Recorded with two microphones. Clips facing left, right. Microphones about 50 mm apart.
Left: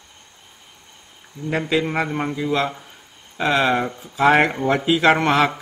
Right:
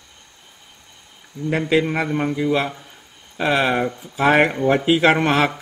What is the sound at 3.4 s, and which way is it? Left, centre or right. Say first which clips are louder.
Speech: even; centre.